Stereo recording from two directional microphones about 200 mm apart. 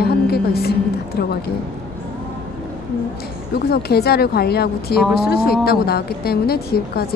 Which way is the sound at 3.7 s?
50° left (ahead or behind).